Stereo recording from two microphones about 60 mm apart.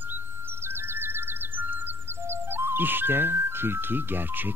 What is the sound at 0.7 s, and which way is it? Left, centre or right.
Music, right.